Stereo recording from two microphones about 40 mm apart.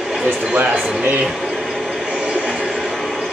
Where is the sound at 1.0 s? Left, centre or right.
Right.